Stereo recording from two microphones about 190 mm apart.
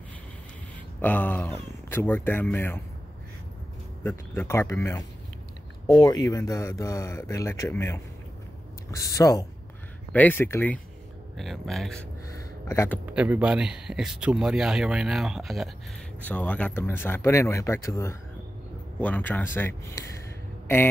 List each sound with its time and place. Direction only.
1.0 s speech: 10° left (ahead or behind)
4.0 s speech: 10° left (ahead or behind)
9.0 s speech: 15° left (ahead or behind)
12.6 s speech: 15° left (ahead or behind)
13.0 s speech: 10° right (ahead or behind); by 20.1 s 15° left (ahead or behind)